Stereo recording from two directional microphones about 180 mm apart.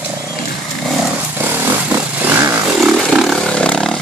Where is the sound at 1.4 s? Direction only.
10° right (ahead or behind).